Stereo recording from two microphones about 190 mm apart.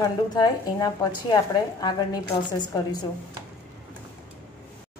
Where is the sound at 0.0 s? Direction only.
20° left (ahead or behind).